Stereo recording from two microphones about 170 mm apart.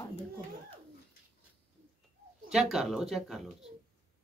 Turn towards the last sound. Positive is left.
turn(degrees=0)  # may be behind; listen again after turning